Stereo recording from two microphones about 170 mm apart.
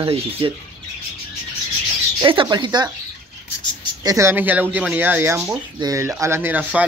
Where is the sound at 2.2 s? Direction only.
25° right (ahead or behind).